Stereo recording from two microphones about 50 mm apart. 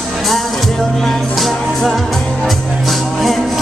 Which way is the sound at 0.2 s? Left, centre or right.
Centre.